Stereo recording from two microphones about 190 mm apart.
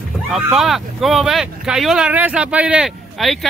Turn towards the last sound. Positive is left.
turn(degrees=-5)  # may be behind; listen again after turning